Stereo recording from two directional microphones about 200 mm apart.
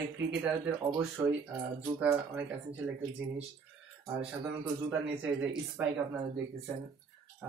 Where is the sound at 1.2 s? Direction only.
15° right (ahead or behind).